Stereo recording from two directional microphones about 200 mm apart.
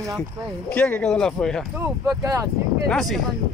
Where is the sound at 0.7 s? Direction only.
10° left (ahead or behind).